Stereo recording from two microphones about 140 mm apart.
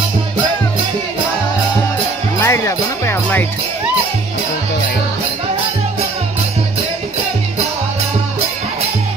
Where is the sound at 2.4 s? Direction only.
20° left (ahead or behind).